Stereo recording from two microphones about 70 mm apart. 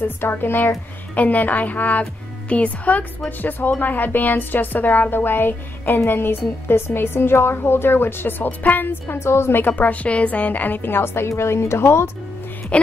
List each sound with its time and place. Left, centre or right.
0.0 s a woman's voice: left
9.0 s a woman's voice: left
12.7 s speech: centre